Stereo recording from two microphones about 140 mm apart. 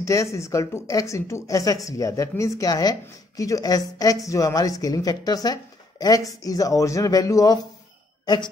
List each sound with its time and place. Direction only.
0.0 s speech: 20° left (ahead or behind)